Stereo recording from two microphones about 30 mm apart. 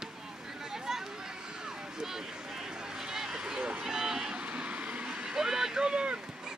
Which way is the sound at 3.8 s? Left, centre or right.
Centre.